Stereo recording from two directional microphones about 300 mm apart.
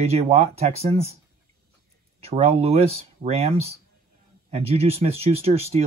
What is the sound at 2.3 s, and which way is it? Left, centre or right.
Speech, centre.